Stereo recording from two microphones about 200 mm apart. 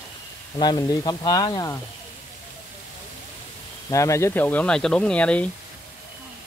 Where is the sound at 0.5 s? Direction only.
20° left (ahead or behind).